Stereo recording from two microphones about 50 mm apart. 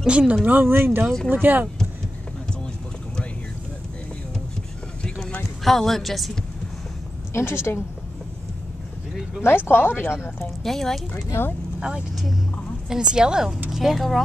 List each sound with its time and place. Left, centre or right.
0.0 s speech: right
0.5 s speech: right
1.0 s speech: centre
1.3 s speech: right
5.6 s speech: centre
7.3 s a woman's voice: left
9.4 s speech: left
10.6 s speech: centre
12.9 s a woman's voice: centre